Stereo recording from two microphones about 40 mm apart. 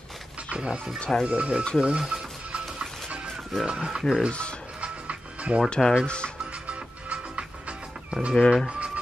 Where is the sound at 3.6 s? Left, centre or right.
Right.